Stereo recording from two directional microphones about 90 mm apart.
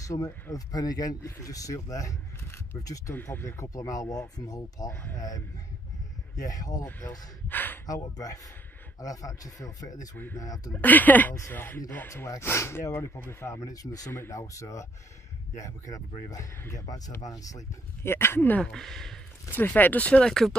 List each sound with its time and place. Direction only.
0.0 s speech: 35° left (ahead or behind)
3.2 s speech: 25° left (ahead or behind)
3.6 s speech: 40° left (ahead or behind)
6.3 s speech: 40° left (ahead or behind)
7.4 s speech: 20° left (ahead or behind)
7.8 s speech: 40° left (ahead or behind)
10.7 s speech: 20° left (ahead or behind); by 14.1 s 40° left (ahead or behind)
14.1 s speech: 30° left (ahead or behind)
16.3 s speech: 40° left (ahead or behind)
18.0 s speech: 25° left (ahead or behind)
18.6 s speech: 5° left (ahead or behind)
19.5 s speech: 20° left (ahead or behind)